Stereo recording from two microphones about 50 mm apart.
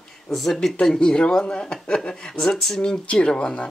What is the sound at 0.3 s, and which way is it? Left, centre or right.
Speech, centre.